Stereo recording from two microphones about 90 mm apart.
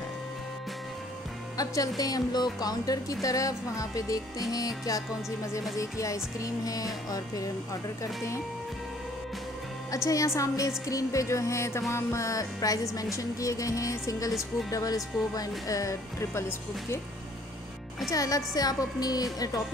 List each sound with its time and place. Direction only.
1.6 s a woman's voice: 40° left (ahead or behind)
9.8 s speech: 35° left (ahead or behind)
18.1 s a woman's voice: 40° left (ahead or behind)